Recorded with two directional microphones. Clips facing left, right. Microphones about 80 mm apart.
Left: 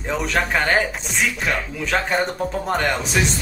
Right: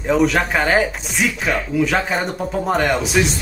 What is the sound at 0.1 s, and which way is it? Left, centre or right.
Speech, centre.